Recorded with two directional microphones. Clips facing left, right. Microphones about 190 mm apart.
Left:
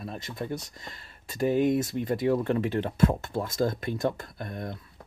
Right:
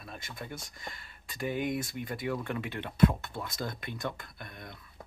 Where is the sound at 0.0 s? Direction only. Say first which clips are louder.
Left 8 dB; 35° left (ahead or behind).